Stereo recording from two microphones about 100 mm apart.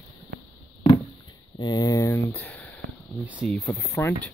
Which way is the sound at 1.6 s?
40° left (ahead or behind).